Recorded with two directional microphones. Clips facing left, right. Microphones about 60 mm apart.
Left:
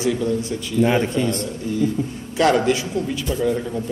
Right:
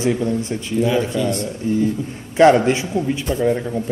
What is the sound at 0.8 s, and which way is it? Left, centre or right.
Speech, left.